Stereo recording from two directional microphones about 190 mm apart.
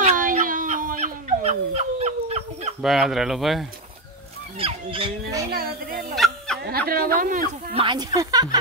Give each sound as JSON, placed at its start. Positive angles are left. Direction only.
{"t": 0.0, "sound": "a sound", "side_deg": -45}
{"t": 2.8, "sound": "speech", "side_deg": 0}
{"t": 4.6, "sound": "speech", "side_deg": -30}
{"t": 5.5, "sound": "speech", "side_deg": -55}
{"t": 6.1, "sound": "fowl", "side_deg": 0}
{"t": 6.9, "sound": "speech", "side_deg": -50}
{"t": 7.7, "sound": "speech", "side_deg": -25}